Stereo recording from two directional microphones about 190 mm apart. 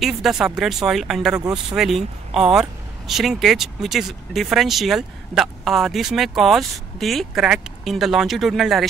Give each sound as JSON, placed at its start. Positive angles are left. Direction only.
{"t": 0.0, "sound": "speech", "side_deg": 0}